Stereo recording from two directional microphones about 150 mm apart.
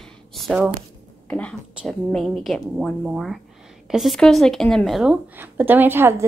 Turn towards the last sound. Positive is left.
turn(degrees=-15)  # may be behind; listen again after turning